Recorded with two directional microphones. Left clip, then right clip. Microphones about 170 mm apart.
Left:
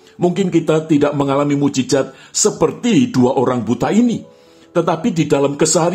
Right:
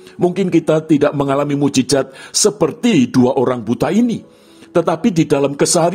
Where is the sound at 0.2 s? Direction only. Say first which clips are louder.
Right 1 dB; 35° right (ahead or behind).